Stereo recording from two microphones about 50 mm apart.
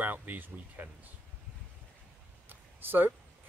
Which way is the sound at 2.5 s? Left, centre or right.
Right.